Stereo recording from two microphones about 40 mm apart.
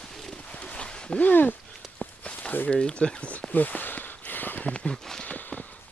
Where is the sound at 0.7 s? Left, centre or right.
Left.